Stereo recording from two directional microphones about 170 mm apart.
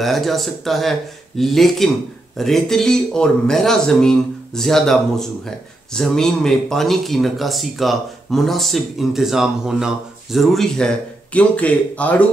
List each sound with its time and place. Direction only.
0.0 s speech: centre (ahead or behind)